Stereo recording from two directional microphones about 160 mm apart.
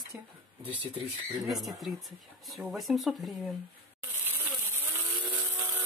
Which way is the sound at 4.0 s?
15° right (ahead or behind).